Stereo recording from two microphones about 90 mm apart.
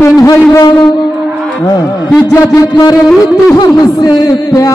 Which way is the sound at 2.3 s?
35° left (ahead or behind).